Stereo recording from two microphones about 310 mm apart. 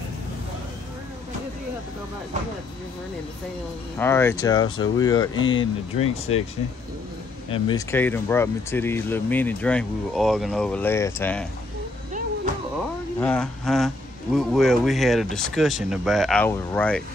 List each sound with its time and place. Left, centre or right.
4.0 s speech: centre
7.5 s speech: centre
13.2 s speech: centre